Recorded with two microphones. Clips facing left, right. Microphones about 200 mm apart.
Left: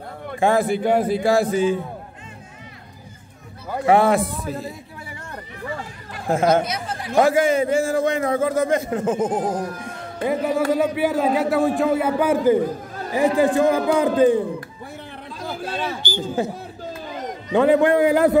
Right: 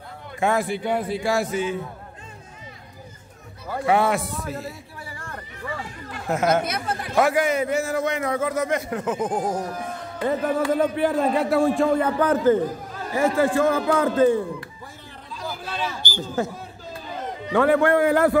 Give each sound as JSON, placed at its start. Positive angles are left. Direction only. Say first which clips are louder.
{"t": 0.4, "sound": "a man's voice", "louder": "left 4 dB", "side_deg": 30}
{"t": 0.7, "sound": "a man's voice", "louder": "left 6 dB", "side_deg": 45}
{"t": 3.8, "sound": "a man's voice", "louder": "left 4 dB", "side_deg": 35}
{"t": 6.2, "sound": "a man's voice", "louder": "left 3 dB", "side_deg": 30}
{"t": 6.6, "sound": "speech", "louder": "even", "side_deg": -55}
{"t": 7.2, "sound": "a man's voice", "louder": "left 4 dB", "side_deg": 30}
{"t": 10.2, "sound": "a man's voice", "louder": "left 2 dB", "side_deg": 10}
{"t": 15.4, "sound": "a sound", "louder": "left 3 dB", "side_deg": 55}
{"t": 17.5, "sound": "a man's voice", "louder": "left 2 dB", "side_deg": 20}